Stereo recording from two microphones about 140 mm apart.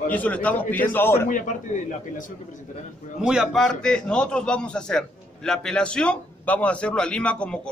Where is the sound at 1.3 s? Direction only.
65° left (ahead or behind).